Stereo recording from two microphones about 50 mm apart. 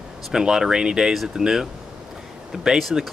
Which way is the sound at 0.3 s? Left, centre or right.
Centre.